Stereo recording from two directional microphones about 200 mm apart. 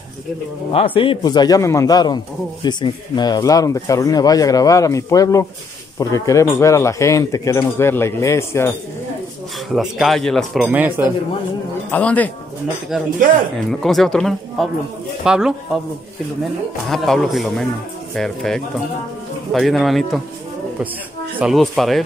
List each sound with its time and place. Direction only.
0.7 s a man's voice: 25° left (ahead or behind)
9.8 s speech: centre (ahead or behind)
11.9 s speech: 5° left (ahead or behind)
12.9 s speech: 5° right (ahead or behind)
16.9 s speech: centre (ahead or behind)
21.4 s speech: centre (ahead or behind)